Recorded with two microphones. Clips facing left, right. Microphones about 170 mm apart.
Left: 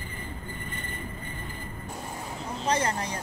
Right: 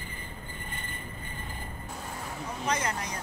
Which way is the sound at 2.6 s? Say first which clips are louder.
Left 4 dB; 30° left (ahead or behind).